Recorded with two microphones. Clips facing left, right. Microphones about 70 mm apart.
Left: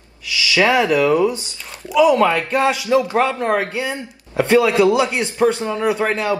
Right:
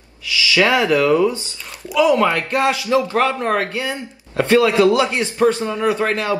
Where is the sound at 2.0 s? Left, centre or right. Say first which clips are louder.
Even; right.